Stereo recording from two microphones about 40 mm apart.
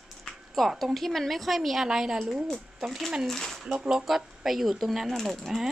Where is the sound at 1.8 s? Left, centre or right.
Centre.